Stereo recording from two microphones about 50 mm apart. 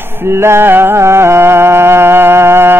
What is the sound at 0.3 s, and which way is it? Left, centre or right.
Music, right.